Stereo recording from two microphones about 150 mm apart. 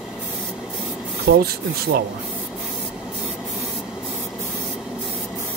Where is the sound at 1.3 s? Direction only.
90° right.